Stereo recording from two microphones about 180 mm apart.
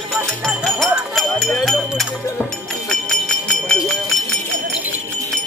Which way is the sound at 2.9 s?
5° left (ahead or behind).